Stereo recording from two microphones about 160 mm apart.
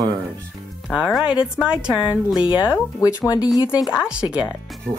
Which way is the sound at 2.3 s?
30° left (ahead or behind).